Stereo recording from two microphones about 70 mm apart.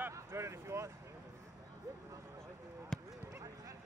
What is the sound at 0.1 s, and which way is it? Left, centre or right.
Speech, right.